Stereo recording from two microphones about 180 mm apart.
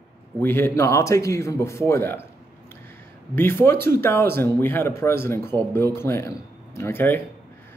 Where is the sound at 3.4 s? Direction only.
15° left (ahead or behind).